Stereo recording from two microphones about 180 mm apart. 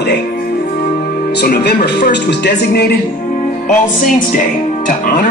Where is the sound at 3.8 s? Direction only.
45° left (ahead or behind).